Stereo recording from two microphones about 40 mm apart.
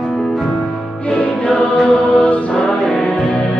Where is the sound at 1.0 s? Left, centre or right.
Left.